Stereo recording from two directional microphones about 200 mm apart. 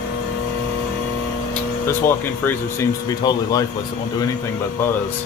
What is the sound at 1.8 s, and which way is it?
Speech, 10° left (ahead or behind).